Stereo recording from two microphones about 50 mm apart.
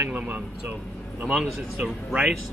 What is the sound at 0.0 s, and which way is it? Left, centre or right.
Speech, right.